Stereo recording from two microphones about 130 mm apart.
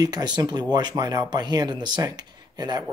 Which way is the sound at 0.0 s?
30° right (ahead or behind).